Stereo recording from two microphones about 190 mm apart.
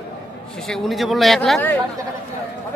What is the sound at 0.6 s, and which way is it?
Speech, centre (ahead or behind).